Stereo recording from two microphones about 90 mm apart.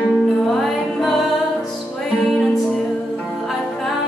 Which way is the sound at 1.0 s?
Centre (ahead or behind).